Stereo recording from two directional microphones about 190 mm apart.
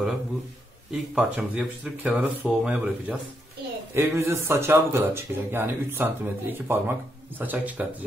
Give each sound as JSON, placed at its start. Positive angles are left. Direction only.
{"t": 1.1, "sound": "a man's voice", "side_deg": -5}